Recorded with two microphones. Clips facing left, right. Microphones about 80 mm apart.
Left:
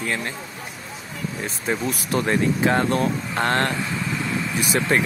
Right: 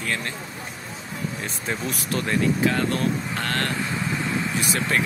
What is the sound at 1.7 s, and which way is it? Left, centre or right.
Speech, left.